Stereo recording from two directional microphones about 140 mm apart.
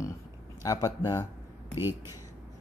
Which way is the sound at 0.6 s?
25° left (ahead or behind).